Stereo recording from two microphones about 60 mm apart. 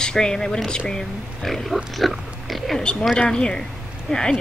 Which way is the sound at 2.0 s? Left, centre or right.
Centre.